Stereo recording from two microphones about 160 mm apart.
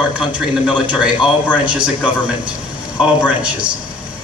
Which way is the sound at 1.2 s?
10° right (ahead or behind).